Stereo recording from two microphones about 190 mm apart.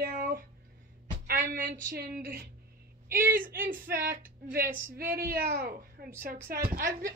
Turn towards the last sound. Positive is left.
turn(degrees=-50)  # may be behind; listen again after turning